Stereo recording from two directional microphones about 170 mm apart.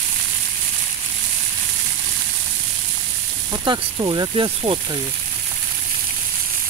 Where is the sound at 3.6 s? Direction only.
25° right (ahead or behind).